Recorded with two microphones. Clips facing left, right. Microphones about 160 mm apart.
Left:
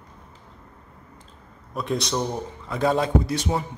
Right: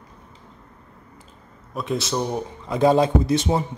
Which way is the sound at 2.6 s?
20° right (ahead or behind).